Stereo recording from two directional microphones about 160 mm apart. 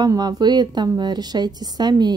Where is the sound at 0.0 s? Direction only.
25° right (ahead or behind).